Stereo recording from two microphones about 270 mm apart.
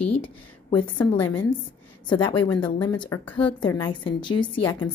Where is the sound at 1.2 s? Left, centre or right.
Centre.